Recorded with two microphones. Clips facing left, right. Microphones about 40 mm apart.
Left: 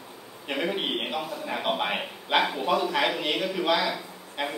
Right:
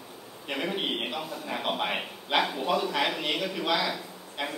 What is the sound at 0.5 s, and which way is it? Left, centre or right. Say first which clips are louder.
A man's voice: left 2 dB; centre.